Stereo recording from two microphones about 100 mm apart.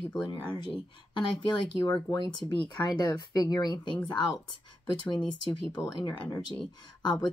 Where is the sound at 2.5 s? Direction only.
45° left (ahead or behind).